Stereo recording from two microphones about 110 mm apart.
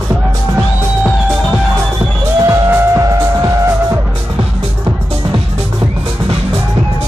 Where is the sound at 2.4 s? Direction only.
25° right (ahead or behind).